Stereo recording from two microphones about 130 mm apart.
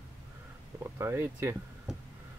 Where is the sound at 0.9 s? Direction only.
20° right (ahead or behind).